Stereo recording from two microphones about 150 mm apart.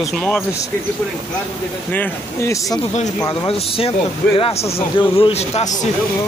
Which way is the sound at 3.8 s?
40° left (ahead or behind).